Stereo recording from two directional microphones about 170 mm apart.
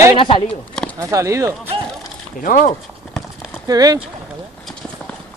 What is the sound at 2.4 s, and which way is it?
Speech, 50° left (ahead or behind).